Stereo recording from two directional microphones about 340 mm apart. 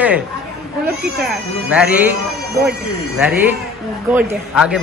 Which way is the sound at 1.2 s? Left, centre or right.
Centre.